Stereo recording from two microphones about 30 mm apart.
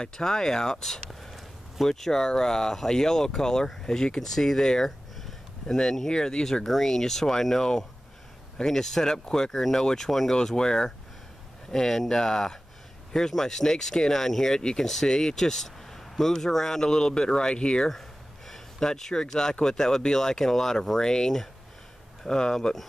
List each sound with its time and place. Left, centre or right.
0.2 s speech: centre
4.3 s speech: centre
6.6 s speech: centre
14.6 s speech: left
18.5 s speech: centre
21.0 s speech: left